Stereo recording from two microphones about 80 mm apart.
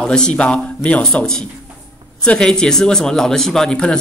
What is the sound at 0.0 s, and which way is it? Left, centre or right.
Speech, centre.